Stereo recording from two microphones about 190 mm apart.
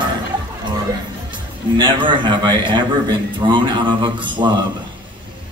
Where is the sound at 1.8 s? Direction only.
25° right (ahead or behind).